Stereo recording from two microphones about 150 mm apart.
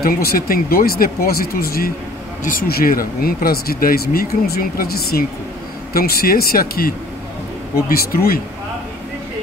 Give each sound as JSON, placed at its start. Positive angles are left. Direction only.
{"t": 0.0, "sound": "speech", "side_deg": 80}
{"t": 2.4, "sound": "speech", "side_deg": 70}
{"t": 7.7, "sound": "speech", "side_deg": 90}